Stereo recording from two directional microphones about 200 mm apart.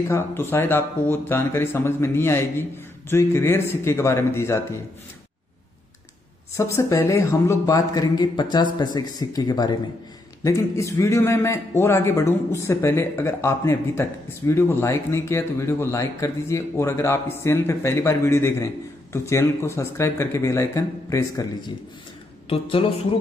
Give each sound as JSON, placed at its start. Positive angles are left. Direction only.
{"t": 0.1, "sound": "speech", "side_deg": 10}
{"t": 6.5, "sound": "speech", "side_deg": 15}